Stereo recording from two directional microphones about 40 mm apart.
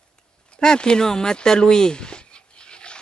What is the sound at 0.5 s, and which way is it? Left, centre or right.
Speech, left.